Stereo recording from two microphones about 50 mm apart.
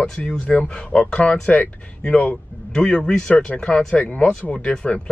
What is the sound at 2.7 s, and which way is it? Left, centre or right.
Speech, centre.